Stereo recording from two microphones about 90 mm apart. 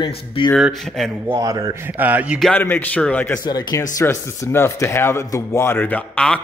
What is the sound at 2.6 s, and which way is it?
Speech, 20° left (ahead or behind).